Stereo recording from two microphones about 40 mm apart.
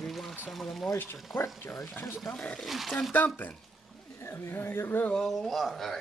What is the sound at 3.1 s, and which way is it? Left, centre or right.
Speech, left.